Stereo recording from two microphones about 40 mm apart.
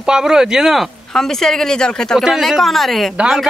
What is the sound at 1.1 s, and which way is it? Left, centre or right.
A woman's voice, centre.